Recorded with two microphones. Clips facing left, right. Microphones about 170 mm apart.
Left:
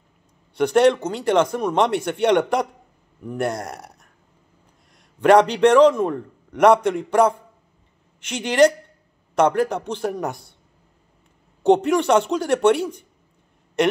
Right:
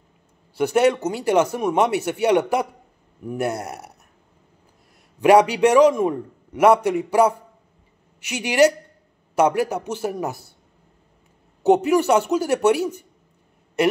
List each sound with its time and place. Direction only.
0.6 s a man's voice: 5° right (ahead or behind)
5.2 s a man's voice: 10° right (ahead or behind)
11.6 s a man's voice: 5° right (ahead or behind)